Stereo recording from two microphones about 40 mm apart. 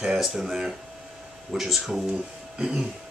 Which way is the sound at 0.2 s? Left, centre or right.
Centre.